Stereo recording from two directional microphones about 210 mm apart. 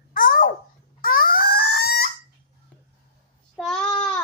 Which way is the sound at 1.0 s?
45° left (ahead or behind).